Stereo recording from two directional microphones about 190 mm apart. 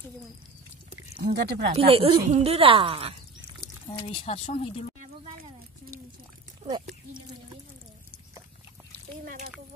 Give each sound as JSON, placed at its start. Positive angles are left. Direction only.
{"t": 1.3, "sound": "speech", "side_deg": -60}
{"t": 1.8, "sound": "a woman's voice", "side_deg": -30}
{"t": 4.0, "sound": "speech", "side_deg": 30}
{"t": 6.6, "sound": "a woman's voice", "side_deg": -25}
{"t": 9.2, "sound": "speech", "side_deg": -50}